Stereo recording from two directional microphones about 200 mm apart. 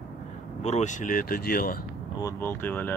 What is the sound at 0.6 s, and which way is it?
Speech, 35° left (ahead or behind).